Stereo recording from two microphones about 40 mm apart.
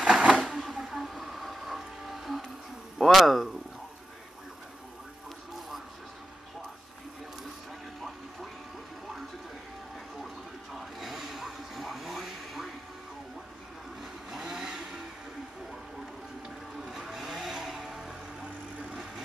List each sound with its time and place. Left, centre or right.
0.0 s a sound: centre
0.7 s music: centre
3.0 s speech: centre
10.2 s television: centre
14.4 s vehicle: right
16.8 s vehicle: centre
17.6 s music: centre
18.4 s vehicle: right